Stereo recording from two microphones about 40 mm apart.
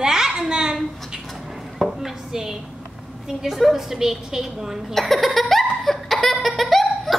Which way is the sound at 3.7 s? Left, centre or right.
Centre.